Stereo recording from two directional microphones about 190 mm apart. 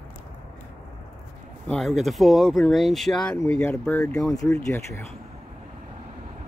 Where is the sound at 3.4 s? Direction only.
15° left (ahead or behind).